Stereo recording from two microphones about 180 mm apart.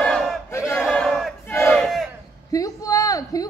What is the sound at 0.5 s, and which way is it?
Battle cry, 15° left (ahead or behind).